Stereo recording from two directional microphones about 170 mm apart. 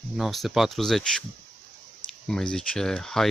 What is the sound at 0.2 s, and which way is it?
Speech, centre (ahead or behind).